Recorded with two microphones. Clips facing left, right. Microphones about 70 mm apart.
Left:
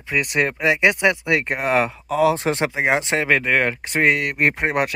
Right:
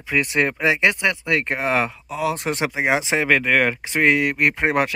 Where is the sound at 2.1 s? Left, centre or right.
Left.